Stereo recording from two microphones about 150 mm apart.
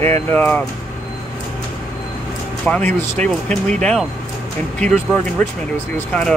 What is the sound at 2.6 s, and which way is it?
Speech, 10° left (ahead or behind).